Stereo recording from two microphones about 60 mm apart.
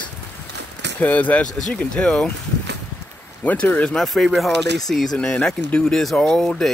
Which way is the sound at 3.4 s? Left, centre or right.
Left.